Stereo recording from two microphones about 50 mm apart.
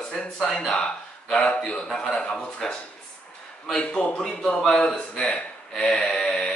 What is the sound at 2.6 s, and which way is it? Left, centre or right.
Speech, centre.